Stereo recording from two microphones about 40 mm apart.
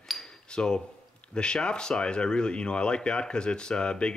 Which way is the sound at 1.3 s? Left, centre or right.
Left.